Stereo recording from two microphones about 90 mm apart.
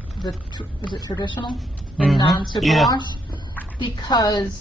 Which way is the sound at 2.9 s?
55° left (ahead or behind).